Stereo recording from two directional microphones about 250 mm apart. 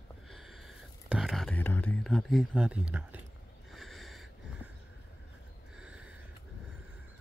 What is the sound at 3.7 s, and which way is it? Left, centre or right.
Sniff, centre.